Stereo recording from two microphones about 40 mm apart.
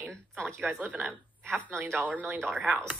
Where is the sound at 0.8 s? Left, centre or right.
Right.